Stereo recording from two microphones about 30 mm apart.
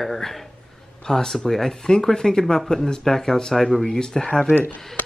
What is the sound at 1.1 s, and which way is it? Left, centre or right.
Speech, left.